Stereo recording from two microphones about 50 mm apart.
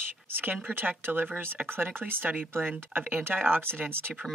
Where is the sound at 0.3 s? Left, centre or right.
Right.